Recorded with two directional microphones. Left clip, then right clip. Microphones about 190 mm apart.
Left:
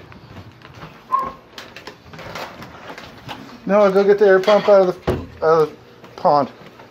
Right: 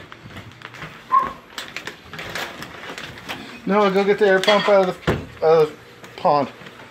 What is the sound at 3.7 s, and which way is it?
Speech, 15° left (ahead or behind).